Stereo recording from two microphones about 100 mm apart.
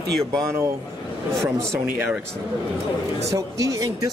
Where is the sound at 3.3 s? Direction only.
35° right (ahead or behind).